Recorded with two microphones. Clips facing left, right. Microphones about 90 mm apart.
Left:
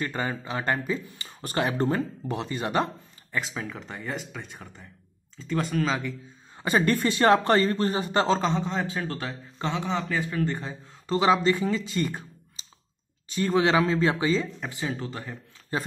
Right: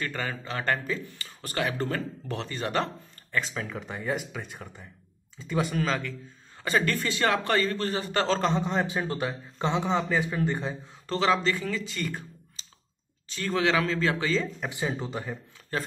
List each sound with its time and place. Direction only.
0.0 s speech: 20° left (ahead or behind)
3.3 s speech: 5° left (ahead or behind)
6.6 s speech: 20° left (ahead or behind)
8.4 s speech: centre (ahead or behind)
8.8 s speech: 15° right (ahead or behind)
11.1 s speech: 15° left (ahead or behind)
11.9 s a sound: 20° left (ahead or behind)
13.3 s speech: 20° left (ahead or behind)
14.8 s speech: 15° right (ahead or behind)